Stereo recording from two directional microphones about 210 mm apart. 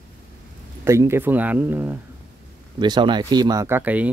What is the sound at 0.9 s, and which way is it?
Speech, 10° right (ahead or behind).